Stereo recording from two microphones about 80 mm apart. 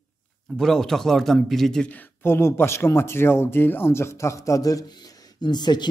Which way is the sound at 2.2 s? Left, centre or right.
Left.